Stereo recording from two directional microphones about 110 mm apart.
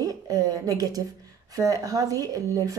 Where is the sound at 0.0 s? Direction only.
35° right (ahead or behind).